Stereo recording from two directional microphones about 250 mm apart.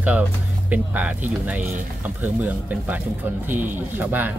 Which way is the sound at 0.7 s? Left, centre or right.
Centre.